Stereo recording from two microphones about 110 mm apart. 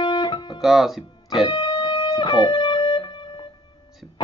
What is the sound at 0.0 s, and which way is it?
Guitar, 45° left (ahead or behind).